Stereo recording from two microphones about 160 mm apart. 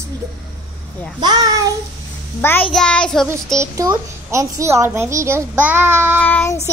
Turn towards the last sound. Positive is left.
turn(degrees=10)  # may be behind; listen again after turning